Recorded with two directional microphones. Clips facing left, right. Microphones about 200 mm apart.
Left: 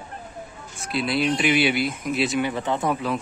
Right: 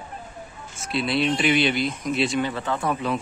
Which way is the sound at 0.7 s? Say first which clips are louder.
Even; centre (ahead or behind).